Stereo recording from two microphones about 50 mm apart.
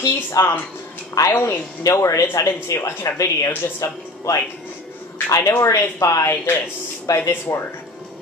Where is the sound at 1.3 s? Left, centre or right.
Left.